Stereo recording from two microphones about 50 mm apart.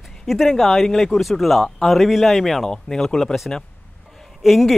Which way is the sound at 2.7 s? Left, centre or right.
Centre.